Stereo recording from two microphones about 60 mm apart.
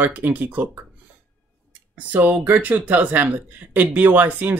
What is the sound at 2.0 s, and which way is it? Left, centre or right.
Speech, right.